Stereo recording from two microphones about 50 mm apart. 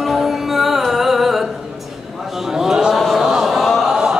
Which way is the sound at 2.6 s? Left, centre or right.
Centre.